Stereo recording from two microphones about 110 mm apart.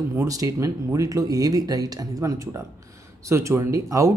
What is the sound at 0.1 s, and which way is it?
Speech, 30° right (ahead or behind).